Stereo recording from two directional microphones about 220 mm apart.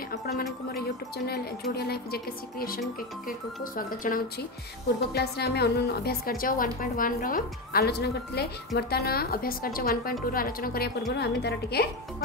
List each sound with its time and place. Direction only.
0.1 s a woman's voice: 45° left (ahead or behind)